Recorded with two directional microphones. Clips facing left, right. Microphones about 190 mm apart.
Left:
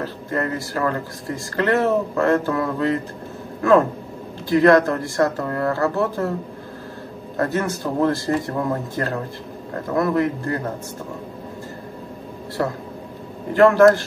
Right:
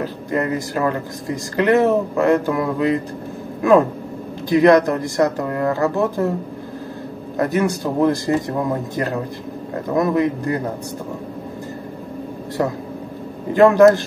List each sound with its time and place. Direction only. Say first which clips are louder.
0.0 s speech: right 3 dB; 15° right (ahead or behind)
4.5 s speech: right 2 dB; 20° right (ahead or behind)
7.3 s speech: right 3 dB; 15° right (ahead or behind)
12.6 s speech: right 2 dB; 20° right (ahead or behind)